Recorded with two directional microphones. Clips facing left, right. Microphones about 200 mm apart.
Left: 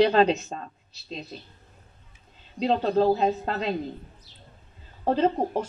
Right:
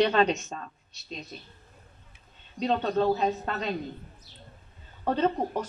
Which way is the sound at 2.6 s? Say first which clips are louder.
Left 3 dB; 30° left (ahead or behind).